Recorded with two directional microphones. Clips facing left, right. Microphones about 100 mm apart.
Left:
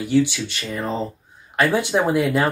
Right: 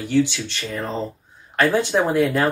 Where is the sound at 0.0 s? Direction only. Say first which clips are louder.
Left 1 dB; 10° left (ahead or behind).